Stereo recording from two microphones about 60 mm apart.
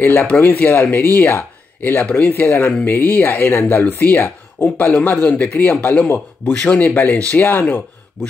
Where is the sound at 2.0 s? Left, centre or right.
Left.